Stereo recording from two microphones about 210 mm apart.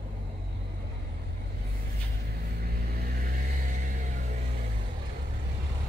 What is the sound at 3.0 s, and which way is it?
Vehicle, 45° right (ahead or behind).